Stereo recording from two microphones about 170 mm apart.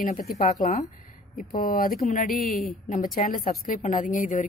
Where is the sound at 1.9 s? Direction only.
45° left (ahead or behind).